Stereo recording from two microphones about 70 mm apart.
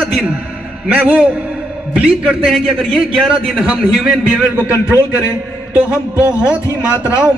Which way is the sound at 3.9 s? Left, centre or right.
Centre.